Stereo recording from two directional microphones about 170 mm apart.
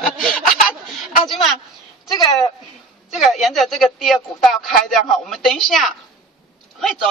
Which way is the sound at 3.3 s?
Centre (ahead or behind).